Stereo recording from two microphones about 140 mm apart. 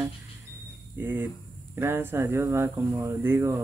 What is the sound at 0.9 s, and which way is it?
Speech, 15° right (ahead or behind).